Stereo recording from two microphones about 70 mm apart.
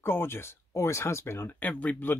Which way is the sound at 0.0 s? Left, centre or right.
Left.